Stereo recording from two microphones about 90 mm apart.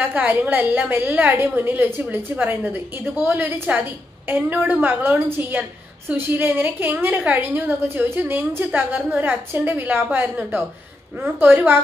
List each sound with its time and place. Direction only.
0.0 s a woman's voice: 15° right (ahead or behind)